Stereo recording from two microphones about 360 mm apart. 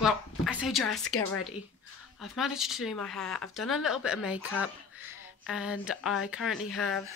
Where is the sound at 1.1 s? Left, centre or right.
Left.